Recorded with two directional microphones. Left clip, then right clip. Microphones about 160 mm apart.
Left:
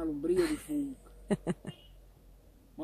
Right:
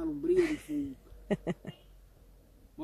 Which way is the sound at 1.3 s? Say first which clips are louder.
Even; 15° left (ahead or behind).